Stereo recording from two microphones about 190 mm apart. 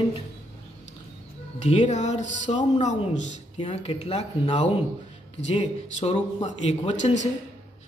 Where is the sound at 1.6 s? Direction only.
35° left (ahead or behind).